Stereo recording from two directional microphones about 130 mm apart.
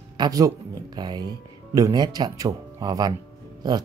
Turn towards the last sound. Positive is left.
turn(degrees=-30)  # may be behind; listen again after turning